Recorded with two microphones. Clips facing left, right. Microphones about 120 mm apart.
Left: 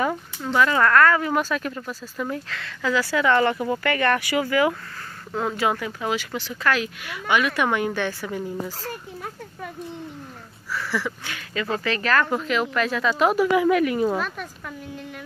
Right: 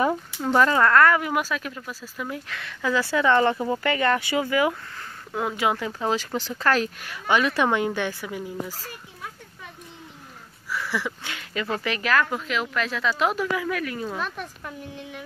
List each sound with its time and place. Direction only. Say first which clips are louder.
0.0 s a sound: right 2 dB; 40° right (ahead or behind)
0.7 s speech: even; 20° right (ahead or behind); by 2.4 s 5° right (ahead or behind)
2.5 s speech: right 1 dB; 15° right (ahead or behind)
3.5 s speech: left 1 dB; 5° right (ahead or behind)
3.8 s speech: left 1 dB; 20° right (ahead or behind)
10.7 s speech: left 1 dB; 15° right (ahead or behind)
11.8 s speech: left 1 dB; 10° right (ahead or behind)
13.5 s speech: left 8 dB; 15° left (ahead or behind)
14.1 s speech: left 4 dB; centre (ahead or behind)